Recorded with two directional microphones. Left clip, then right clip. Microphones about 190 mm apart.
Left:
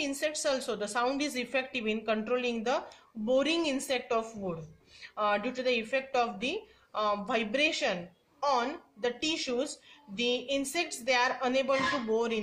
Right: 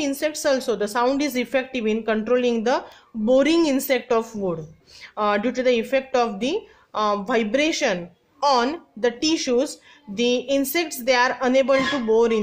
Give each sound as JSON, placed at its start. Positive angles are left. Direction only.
{"t": 0.0, "sound": "speech", "side_deg": -40}